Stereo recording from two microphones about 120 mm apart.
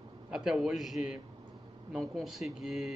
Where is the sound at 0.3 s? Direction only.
5° right (ahead or behind).